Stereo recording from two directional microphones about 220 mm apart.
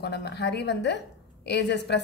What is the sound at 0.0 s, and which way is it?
A woman's voice, 50° left (ahead or behind).